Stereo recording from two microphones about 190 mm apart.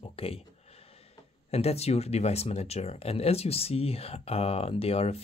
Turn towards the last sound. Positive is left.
turn(degrees=30)  # may be behind; listen again after turning